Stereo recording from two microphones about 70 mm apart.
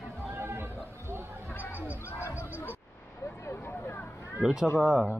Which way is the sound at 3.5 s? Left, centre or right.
Left.